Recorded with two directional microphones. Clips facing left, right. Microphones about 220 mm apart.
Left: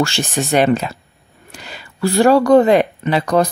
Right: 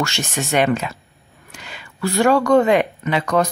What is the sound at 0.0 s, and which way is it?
Speech, 35° left (ahead or behind).